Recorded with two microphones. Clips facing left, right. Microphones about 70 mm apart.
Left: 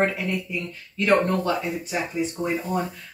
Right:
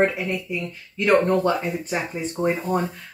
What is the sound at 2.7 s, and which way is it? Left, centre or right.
Speech, right.